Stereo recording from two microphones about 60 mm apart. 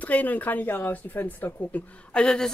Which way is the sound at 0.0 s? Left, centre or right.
Left.